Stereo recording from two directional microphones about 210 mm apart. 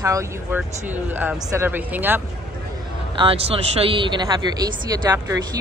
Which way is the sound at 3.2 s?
25° right (ahead or behind).